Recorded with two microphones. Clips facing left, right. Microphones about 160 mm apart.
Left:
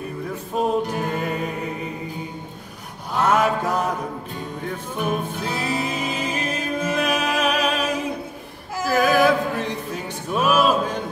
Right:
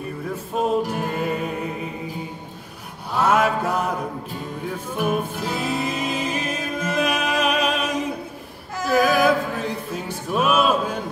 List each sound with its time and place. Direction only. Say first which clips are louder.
0.6 s music: even; 5° right (ahead or behind)
3.2 s mantra: even; 5° right (ahead or behind)
4.3 s music: even; 5° right (ahead or behind)